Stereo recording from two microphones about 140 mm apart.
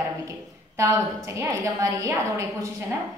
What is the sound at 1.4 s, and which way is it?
Speech, 25° right (ahead or behind).